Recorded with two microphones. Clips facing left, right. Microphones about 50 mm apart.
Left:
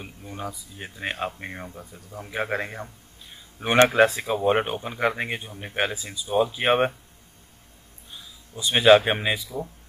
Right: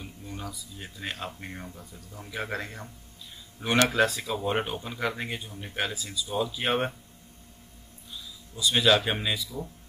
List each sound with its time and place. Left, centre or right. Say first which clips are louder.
0.0 s speech: left 4 dB; left
8.1 s speech: left 1 dB; left